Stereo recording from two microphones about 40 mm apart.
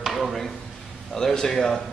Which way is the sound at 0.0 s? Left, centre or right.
Centre.